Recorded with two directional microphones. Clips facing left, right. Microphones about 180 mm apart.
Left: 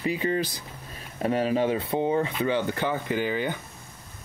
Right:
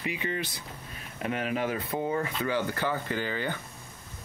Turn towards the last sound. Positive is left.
turn(degrees=15)  # may be behind; listen again after turning